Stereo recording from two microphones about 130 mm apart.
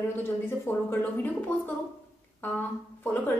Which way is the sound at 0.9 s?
15° left (ahead or behind).